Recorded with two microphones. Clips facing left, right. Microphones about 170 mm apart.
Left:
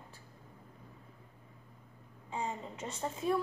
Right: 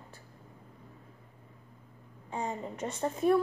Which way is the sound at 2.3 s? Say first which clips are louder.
Right 3 dB; 50° right (ahead or behind).